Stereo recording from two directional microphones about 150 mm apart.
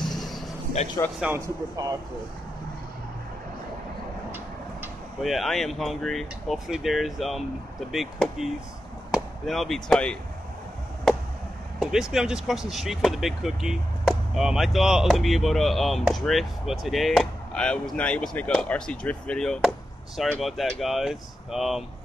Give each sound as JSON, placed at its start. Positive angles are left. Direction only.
{"t": 0.0, "sound": "a sound", "side_deg": 0}
{"t": 1.2, "sound": "speech", "side_deg": -15}
{"t": 5.2, "sound": "speech", "side_deg": 0}
{"t": 11.8, "sound": "speech", "side_deg": -5}